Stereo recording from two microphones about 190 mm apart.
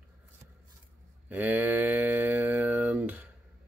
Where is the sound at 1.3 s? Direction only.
10° right (ahead or behind).